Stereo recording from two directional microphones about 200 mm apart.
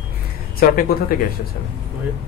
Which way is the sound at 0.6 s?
45° left (ahead or behind).